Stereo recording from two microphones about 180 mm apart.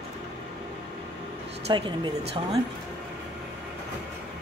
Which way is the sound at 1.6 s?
30° right (ahead or behind).